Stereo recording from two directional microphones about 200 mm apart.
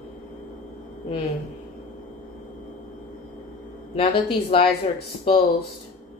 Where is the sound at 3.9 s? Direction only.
25° left (ahead or behind).